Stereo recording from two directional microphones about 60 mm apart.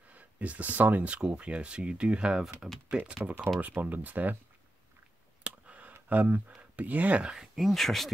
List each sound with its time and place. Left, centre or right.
0.1 s speech: right
5.4 s a sound: right
7.3 s speech: centre